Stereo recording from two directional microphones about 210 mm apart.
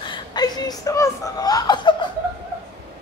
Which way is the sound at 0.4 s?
15° left (ahead or behind).